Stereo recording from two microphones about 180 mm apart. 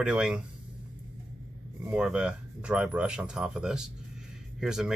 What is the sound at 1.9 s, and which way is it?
Speech, 5° right (ahead or behind).